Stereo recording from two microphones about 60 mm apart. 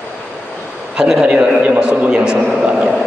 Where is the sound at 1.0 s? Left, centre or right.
Centre.